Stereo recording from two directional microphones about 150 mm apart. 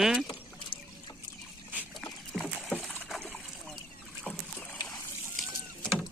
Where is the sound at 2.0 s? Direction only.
Centre (ahead or behind).